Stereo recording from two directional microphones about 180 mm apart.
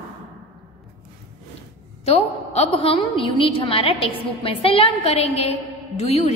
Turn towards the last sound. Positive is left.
turn(degrees=35)  # may be behind; listen again after turning